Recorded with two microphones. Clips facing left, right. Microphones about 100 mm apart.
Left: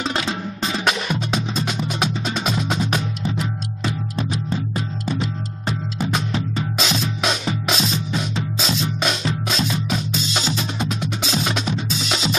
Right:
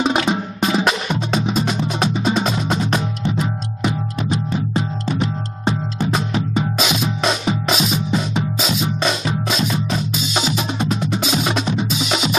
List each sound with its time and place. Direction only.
2.3 s music: centre (ahead or behind)
3.3 s music: 15° right (ahead or behind)
5.7 s music: 25° right (ahead or behind)
6.8 s music: 5° right (ahead or behind)
11.7 s drum: 5° right (ahead or behind)